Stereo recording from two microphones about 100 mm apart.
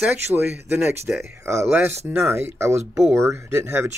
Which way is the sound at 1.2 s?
30° right (ahead or behind).